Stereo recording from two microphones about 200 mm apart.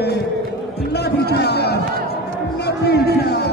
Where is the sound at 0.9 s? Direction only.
55° left (ahead or behind).